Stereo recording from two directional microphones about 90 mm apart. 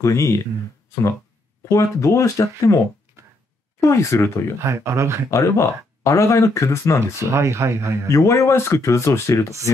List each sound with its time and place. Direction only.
0.0 s speech: 35° left (ahead or behind)
1.7 s speech: 35° left (ahead or behind)
3.8 s speech: 35° left (ahead or behind)
4.6 s speech: 30° right (ahead or behind)
5.3 s speech: 35° left (ahead or behind)
7.2 s speech: 35° right (ahead or behind)
8.1 s speech: 35° left (ahead or behind)